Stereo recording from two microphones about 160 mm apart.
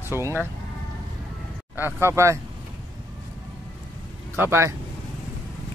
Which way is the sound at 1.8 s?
15° right (ahead or behind).